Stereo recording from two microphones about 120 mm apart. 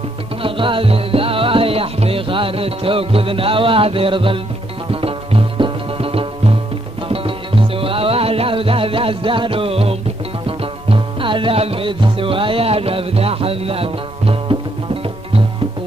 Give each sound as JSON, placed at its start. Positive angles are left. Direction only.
{"t": 0.4, "sound": "music", "side_deg": -45}